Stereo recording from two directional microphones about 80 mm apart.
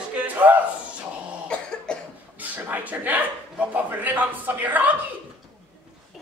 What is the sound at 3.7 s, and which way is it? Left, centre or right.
A man's voice, right.